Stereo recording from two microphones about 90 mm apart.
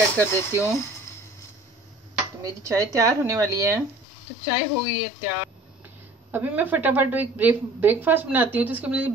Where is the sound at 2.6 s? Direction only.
35° right (ahead or behind).